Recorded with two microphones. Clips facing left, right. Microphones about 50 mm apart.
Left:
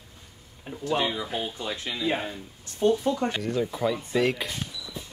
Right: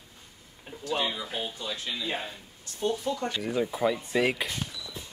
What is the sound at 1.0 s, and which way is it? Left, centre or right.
Speech, centre.